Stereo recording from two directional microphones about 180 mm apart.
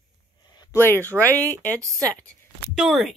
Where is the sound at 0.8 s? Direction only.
10° left (ahead or behind).